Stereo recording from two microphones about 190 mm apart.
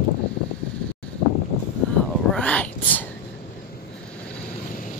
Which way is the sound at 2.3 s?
5° left (ahead or behind).